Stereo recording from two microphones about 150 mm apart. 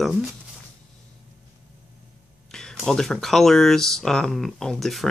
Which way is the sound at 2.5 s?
5° left (ahead or behind).